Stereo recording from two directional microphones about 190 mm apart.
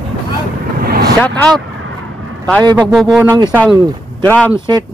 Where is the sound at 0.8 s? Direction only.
50° right (ahead or behind).